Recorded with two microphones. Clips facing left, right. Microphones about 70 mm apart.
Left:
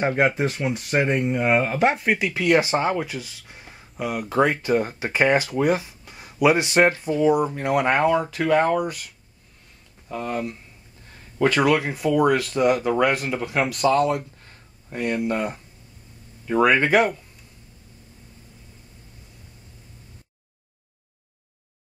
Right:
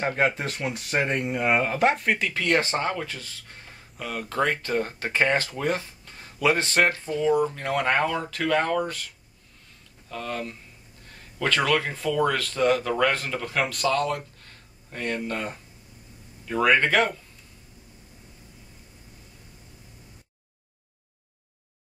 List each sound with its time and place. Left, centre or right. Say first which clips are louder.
0.0 s speech: left 4 dB; centre
13.6 s speech: left 3 dB; centre
14.1 s speech: left 4 dB; centre